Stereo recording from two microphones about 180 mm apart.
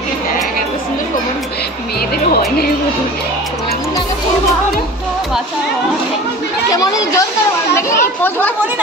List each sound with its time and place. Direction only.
2.3 s speech: 60° left (ahead or behind)
6.7 s speech: 20° left (ahead or behind)